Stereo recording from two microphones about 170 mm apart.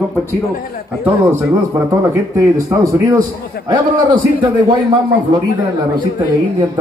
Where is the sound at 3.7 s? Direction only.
30° right (ahead or behind).